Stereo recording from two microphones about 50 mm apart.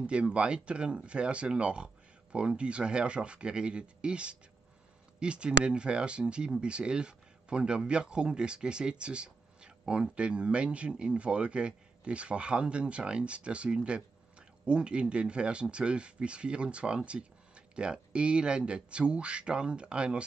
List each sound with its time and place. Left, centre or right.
0.0 s a man's voice: right